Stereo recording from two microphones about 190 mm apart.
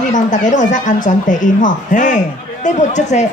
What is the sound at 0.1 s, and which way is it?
A man's voice, 40° left (ahead or behind).